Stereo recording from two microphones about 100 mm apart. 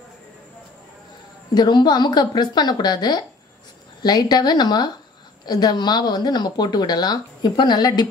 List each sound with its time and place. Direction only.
1.5 s speech: 45° left (ahead or behind)